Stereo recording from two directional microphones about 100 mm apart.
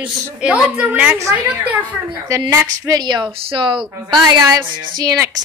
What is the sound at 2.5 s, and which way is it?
Speech, 35° right (ahead or behind).